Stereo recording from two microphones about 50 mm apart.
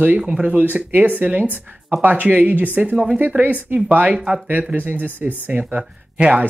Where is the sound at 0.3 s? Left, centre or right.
Right.